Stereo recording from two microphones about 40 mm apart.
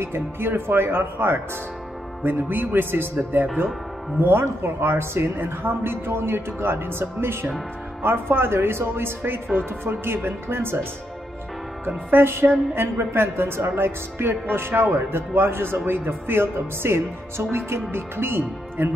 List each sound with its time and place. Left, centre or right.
0.0 s speech: right
2.2 s speech: right
12.1 s speech: right